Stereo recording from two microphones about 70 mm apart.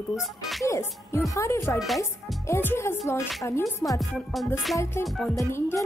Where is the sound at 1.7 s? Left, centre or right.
Centre.